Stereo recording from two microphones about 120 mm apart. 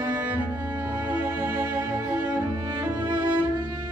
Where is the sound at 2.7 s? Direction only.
40° right (ahead or behind).